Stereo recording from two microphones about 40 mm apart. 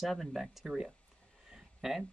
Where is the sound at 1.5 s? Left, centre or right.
Centre.